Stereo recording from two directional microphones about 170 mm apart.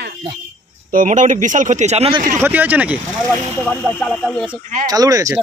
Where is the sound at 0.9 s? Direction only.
50° right (ahead or behind).